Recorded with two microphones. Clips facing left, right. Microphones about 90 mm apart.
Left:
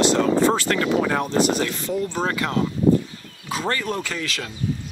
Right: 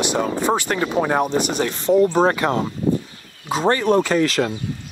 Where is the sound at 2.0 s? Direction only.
40° right (ahead or behind).